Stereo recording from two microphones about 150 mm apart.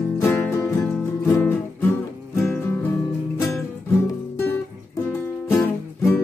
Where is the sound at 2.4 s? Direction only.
15° left (ahead or behind).